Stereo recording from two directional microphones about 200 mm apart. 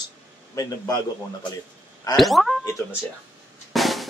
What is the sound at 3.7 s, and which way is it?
Drum, centre (ahead or behind).